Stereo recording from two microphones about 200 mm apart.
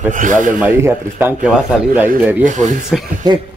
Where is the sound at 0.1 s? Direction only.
40° right (ahead or behind).